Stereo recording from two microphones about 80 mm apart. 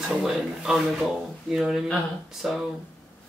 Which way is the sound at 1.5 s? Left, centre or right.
Centre.